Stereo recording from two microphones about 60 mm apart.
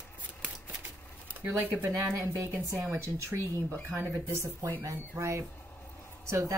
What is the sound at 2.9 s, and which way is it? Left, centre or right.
Speech, right.